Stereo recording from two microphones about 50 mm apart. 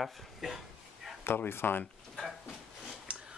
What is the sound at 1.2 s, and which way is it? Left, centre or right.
Speech, left.